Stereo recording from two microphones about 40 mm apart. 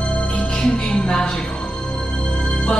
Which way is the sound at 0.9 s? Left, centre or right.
Left.